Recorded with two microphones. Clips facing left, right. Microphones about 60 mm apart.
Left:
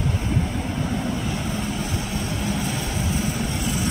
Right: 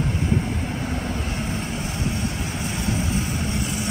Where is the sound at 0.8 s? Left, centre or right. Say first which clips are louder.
Left 2 dB; right.